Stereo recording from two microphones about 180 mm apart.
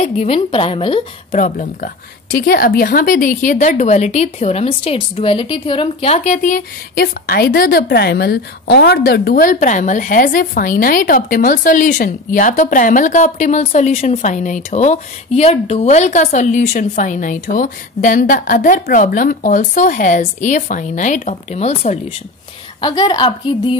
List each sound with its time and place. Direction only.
0.0 s a woman's voice: 35° left (ahead or behind)
1.3 s a woman's voice: 45° left (ahead or behind)
2.3 s a woman's voice: 55° left (ahead or behind); by 22.0 s 40° left (ahead or behind)
22.8 s a woman's voice: 25° left (ahead or behind)